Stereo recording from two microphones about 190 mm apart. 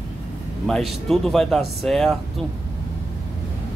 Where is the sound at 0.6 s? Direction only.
Centre (ahead or behind).